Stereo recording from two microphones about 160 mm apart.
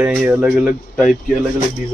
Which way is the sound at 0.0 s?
5° right (ahead or behind).